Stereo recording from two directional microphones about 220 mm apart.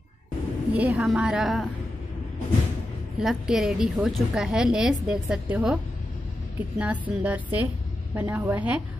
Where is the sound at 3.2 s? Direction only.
Centre (ahead or behind).